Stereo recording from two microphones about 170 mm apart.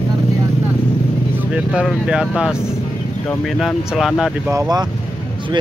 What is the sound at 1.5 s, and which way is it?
Speech, 5° right (ahead or behind).